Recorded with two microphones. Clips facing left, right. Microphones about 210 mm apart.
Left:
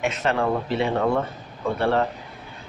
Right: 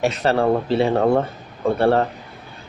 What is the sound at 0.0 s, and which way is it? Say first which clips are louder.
Speech: right 5 dB; 35° right (ahead or behind).